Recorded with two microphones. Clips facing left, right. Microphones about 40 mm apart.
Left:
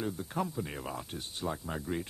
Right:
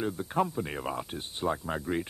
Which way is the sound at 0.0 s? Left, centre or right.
Right.